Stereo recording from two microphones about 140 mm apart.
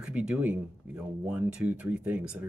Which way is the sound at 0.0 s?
5° right (ahead or behind).